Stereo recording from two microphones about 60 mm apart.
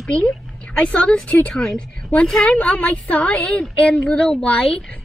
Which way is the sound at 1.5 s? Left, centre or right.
Centre.